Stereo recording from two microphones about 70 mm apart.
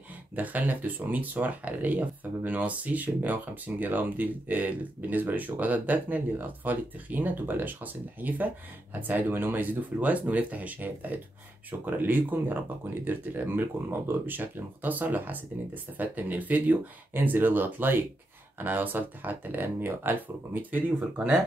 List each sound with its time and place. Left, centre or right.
0.4 s speech: right